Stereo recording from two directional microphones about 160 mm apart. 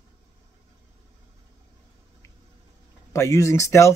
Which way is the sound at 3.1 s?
20° left (ahead or behind).